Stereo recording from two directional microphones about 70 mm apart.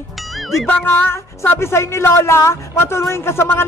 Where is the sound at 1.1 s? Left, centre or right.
Left.